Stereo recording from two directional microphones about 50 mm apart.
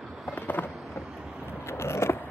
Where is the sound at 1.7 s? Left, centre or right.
Left.